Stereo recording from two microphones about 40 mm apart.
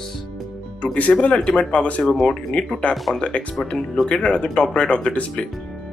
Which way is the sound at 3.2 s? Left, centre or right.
Left.